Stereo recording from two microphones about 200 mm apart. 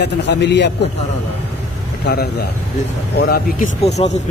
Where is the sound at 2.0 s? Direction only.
55° left (ahead or behind).